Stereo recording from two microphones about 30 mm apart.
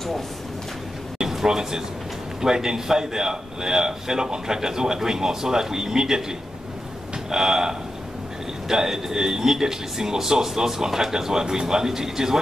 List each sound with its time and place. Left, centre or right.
1.3 s a man's voice: centre
7.2 s speech: centre